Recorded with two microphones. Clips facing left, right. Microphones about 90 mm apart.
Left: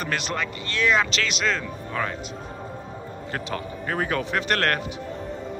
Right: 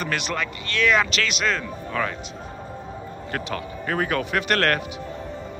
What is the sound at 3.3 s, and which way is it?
A man's voice, 15° left (ahead or behind).